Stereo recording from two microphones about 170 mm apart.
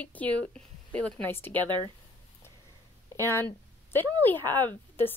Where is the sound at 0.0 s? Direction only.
10° left (ahead or behind).